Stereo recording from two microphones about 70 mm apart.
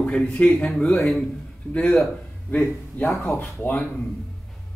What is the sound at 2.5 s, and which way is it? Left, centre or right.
Speech, left.